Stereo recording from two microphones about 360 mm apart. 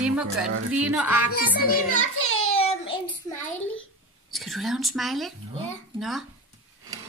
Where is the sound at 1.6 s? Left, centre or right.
Left.